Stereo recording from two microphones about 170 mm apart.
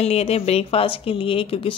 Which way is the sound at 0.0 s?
35° left (ahead or behind).